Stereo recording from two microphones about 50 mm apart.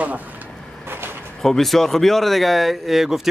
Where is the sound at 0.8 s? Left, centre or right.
Right.